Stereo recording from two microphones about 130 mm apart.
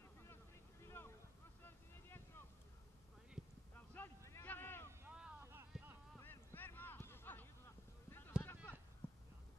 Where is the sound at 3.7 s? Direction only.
15° left (ahead or behind).